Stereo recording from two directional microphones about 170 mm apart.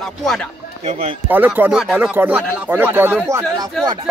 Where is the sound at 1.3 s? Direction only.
10° right (ahead or behind).